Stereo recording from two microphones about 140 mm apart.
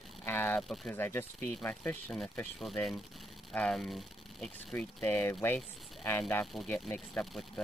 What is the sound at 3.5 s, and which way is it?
Speech, 5° left (ahead or behind).